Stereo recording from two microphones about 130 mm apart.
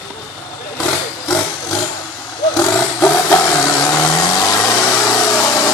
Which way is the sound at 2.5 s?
25° left (ahead or behind).